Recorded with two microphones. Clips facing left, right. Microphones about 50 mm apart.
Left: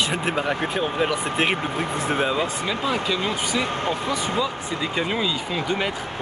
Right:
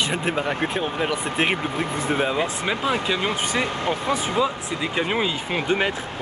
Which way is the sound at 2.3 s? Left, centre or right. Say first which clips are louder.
Right 1 dB; right.